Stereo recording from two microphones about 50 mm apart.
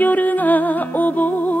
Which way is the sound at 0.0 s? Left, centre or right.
Left.